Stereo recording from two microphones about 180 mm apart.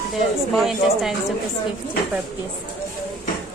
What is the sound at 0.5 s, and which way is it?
Speech, centre (ahead or behind).